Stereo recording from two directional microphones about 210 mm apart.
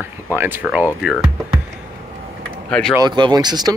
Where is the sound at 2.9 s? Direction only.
20° right (ahead or behind).